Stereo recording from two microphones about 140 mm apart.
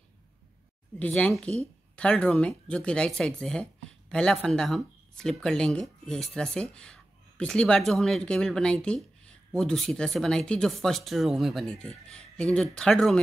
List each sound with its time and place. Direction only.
0.9 s speech: 10° left (ahead or behind)